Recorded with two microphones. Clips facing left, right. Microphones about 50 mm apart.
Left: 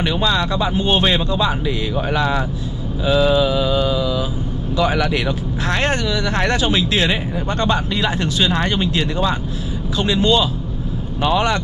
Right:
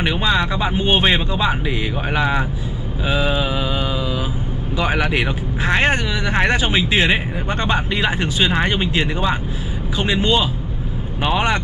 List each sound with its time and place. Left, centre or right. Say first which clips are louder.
0.0 s speech: even; right